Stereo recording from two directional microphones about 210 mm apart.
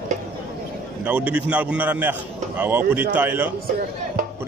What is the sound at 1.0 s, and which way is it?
A man's voice, 5° right (ahead or behind).